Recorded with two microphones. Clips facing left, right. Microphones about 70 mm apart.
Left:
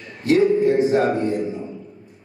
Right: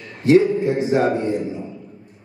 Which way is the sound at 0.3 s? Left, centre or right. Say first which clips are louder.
Right 1 dB; right.